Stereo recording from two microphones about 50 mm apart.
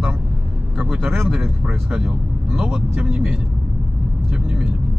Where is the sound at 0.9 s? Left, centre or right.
Centre.